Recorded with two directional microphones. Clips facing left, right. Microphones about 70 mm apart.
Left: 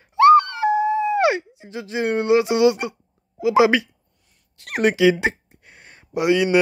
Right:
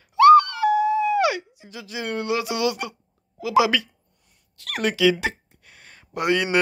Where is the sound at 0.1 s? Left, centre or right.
Left.